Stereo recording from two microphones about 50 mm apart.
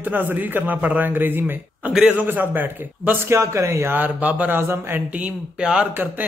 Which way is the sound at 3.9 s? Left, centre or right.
Right.